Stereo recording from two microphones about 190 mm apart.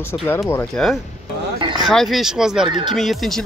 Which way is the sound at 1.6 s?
25° right (ahead or behind).